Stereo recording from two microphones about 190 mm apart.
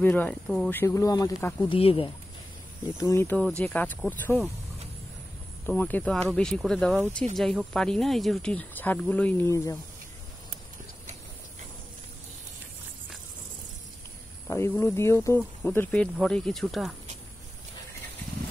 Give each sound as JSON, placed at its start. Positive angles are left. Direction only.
{"t": 0.0, "sound": "speech", "side_deg": 10}
{"t": 1.7, "sound": "speech", "side_deg": 30}
{"t": 3.0, "sound": "speech", "side_deg": 15}
{"t": 5.7, "sound": "speech", "side_deg": 10}
{"t": 14.5, "sound": "speech", "side_deg": 15}